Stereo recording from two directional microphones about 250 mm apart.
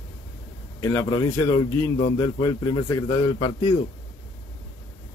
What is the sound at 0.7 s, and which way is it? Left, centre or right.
A man's voice, centre.